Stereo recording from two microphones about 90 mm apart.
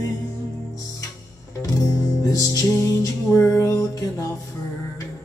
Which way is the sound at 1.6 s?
40° left (ahead or behind).